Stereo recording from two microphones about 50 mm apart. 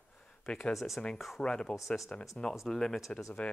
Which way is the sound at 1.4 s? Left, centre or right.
Centre.